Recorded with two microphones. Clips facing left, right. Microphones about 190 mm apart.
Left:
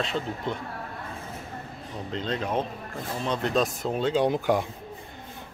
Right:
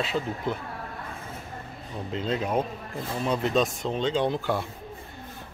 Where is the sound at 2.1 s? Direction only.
5° right (ahead or behind); by 4.7 s 15° left (ahead or behind).